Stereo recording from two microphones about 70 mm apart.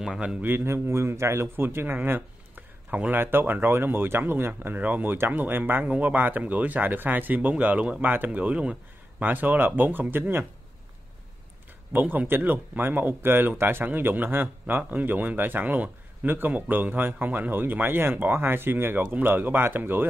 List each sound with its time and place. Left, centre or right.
0.0 s a man's voice: centre
0.4 s speech: right
11.9 s speech: right